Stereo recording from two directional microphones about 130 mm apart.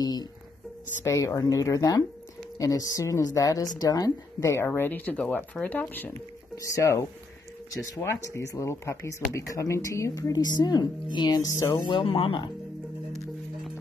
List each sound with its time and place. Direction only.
0.0 s speech: 30° left (ahead or behind)
11.8 s speech: 40° left (ahead or behind)